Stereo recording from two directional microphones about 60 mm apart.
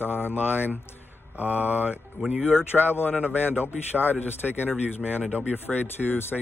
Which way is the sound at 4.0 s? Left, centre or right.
Left.